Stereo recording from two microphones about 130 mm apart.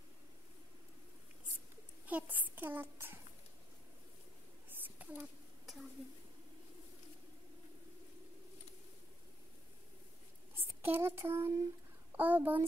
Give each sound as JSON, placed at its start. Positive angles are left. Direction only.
{"t": 2.0, "sound": "a child's voice", "side_deg": -10}
{"t": 4.6, "sound": "a sound", "side_deg": -15}
{"t": 10.5, "sound": "a child's voice", "side_deg": -15}